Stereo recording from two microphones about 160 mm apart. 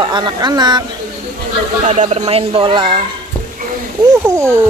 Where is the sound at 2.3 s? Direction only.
35° right (ahead or behind).